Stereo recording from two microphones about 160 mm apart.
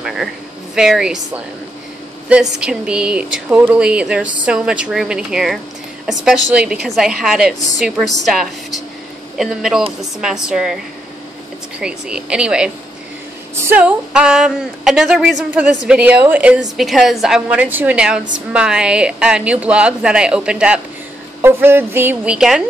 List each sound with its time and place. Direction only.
0.0 s a sound: centre (ahead or behind)
0.7 s a woman's voice: 5° right (ahead or behind)
2.6 s a woman's voice: 5° right (ahead or behind)
11.8 s a woman's voice: 5° right (ahead or behind)